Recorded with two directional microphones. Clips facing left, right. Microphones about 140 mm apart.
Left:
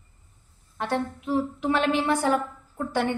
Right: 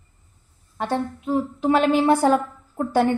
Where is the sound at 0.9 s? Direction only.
20° right (ahead or behind).